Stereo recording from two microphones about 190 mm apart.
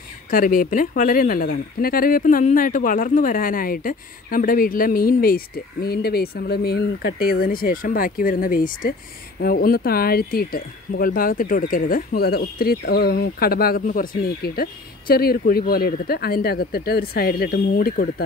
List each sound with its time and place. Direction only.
0.3 s speech: 45° left (ahead or behind)